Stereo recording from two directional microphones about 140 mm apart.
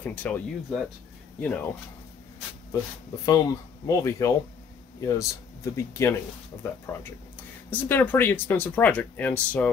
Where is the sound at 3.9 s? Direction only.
25° left (ahead or behind).